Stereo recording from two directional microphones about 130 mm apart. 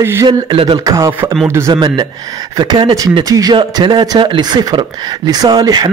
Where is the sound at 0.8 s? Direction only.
25° right (ahead or behind).